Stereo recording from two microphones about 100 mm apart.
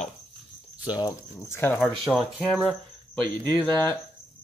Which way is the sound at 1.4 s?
25° left (ahead or behind).